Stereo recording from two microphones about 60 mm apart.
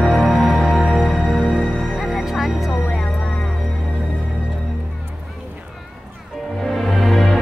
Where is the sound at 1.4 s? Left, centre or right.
Centre.